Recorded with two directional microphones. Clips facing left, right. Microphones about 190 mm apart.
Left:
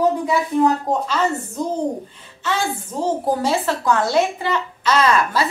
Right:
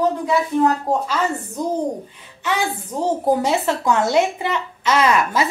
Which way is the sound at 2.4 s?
15° right (ahead or behind).